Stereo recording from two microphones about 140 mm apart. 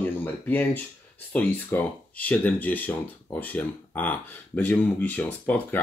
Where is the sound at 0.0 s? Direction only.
15° left (ahead or behind).